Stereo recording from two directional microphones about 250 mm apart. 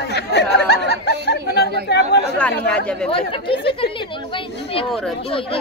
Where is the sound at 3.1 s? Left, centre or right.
Left.